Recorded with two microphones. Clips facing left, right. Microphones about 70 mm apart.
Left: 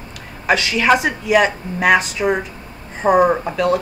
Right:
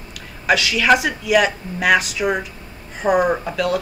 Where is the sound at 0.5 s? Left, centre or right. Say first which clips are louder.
Left 1 dB; left.